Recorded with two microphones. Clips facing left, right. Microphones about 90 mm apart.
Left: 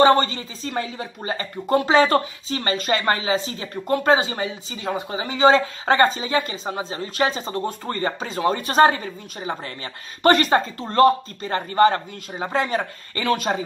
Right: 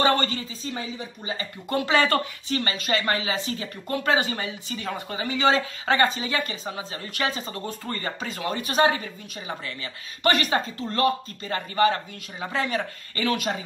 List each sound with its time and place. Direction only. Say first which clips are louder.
0.0 s speech: left 7 dB; 30° left (ahead or behind)
0.7 s speech: left 7 dB; 55° left (ahead or behind)
1.9 s speech: left 4 dB; 25° left (ahead or behind)
2.6 s speech: left 6 dB; 35° left (ahead or behind)